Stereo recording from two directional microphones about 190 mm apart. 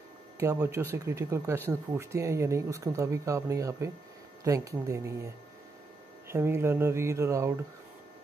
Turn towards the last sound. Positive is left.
turn(degrees=-15)  # may be behind; listen again after turning